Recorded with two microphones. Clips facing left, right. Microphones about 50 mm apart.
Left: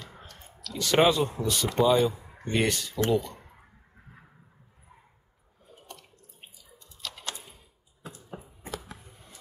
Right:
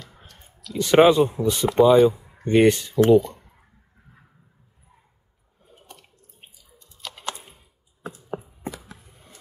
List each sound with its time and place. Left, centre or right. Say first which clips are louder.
0.2 s speech: left 2 dB; centre
2.4 s speech: right 10 dB; right
8.0 s a sound: right 10 dB; right